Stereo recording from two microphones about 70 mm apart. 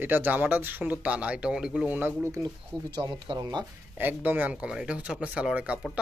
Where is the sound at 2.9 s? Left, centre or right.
Right.